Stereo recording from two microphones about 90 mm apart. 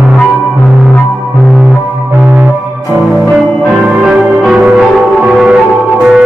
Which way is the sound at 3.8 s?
5° right (ahead or behind).